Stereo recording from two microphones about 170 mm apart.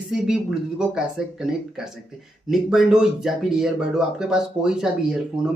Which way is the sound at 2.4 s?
Centre (ahead or behind).